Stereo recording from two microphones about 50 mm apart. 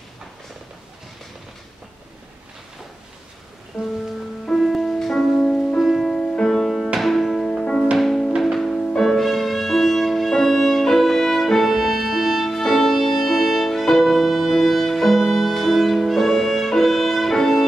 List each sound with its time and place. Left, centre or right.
4.6 s music: centre
8.4 s violin: centre